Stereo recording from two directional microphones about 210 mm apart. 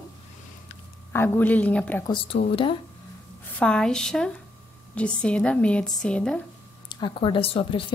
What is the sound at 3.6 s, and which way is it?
A woman's voice, 5° left (ahead or behind).